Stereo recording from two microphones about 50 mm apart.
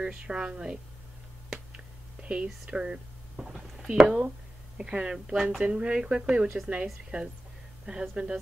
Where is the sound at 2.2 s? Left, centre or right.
Right.